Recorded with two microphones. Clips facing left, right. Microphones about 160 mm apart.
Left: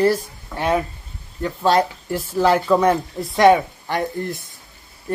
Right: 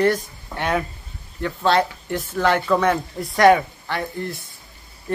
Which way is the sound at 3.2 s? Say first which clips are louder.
Left 1 dB; centre (ahead or behind).